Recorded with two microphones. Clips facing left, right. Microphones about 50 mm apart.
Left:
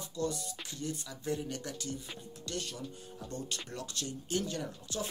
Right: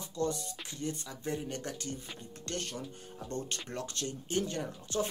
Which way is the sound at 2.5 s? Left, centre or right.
Right.